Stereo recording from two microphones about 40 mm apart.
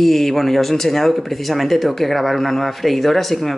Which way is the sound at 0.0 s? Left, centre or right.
Centre.